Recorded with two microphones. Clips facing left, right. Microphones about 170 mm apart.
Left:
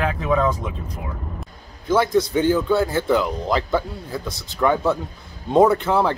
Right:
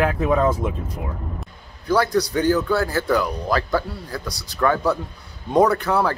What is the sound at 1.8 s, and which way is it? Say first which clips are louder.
Speech: left 1 dB; 20° left (ahead or behind).